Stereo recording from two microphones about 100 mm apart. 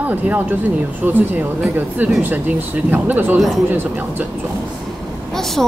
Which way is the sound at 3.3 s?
Centre (ahead or behind).